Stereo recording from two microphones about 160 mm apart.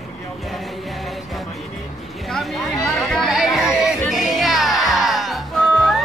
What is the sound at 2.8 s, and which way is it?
Music, centre (ahead or behind).